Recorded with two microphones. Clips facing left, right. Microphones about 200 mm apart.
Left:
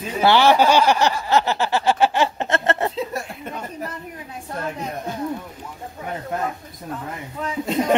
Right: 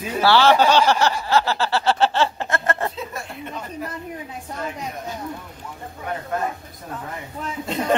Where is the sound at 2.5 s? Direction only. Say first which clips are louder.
Left 3 dB; 25° left (ahead or behind).